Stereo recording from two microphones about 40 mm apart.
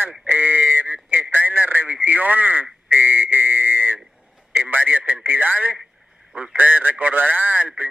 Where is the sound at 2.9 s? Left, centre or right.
Right.